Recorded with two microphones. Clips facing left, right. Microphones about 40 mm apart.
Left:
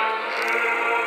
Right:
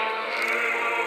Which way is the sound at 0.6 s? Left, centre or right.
Left.